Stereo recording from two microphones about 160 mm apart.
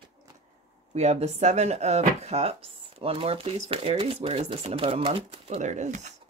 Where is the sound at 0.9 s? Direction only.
45° right (ahead or behind).